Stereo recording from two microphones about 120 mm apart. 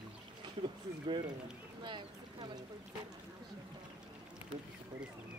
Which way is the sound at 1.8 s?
40° right (ahead or behind).